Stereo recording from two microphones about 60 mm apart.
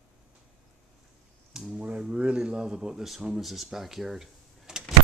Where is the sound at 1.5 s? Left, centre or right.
Centre.